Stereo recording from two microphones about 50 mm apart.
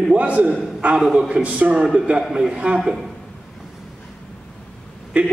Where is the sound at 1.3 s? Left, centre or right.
Right.